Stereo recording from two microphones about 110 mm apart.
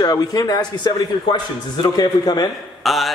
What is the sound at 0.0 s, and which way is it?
A man's voice, 35° left (ahead or behind).